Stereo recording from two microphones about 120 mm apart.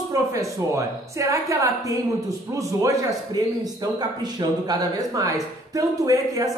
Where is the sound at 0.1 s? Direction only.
30° right (ahead or behind).